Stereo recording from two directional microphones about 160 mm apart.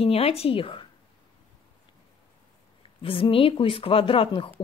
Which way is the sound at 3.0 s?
35° left (ahead or behind).